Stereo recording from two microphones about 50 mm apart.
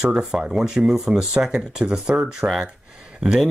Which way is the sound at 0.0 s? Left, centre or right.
Centre.